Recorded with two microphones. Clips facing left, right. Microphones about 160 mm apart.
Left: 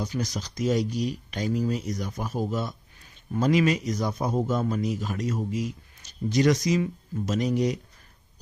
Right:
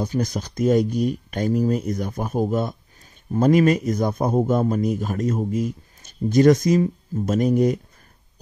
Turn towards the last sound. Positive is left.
turn(degrees=-50)  # may be behind; listen again after turning